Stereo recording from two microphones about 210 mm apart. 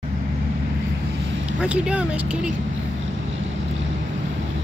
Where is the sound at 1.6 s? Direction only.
5° right (ahead or behind).